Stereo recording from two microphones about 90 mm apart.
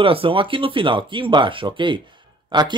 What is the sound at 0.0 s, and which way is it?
Speech, 90° right.